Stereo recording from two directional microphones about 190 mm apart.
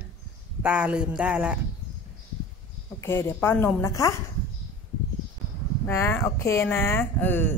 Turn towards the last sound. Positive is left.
turn(degrees=10)  # may be behind; listen again after turning